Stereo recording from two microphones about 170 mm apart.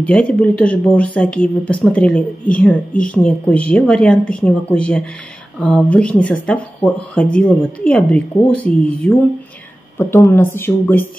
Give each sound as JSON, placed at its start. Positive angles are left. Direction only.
{"t": 0.0, "sound": "speech", "side_deg": 5}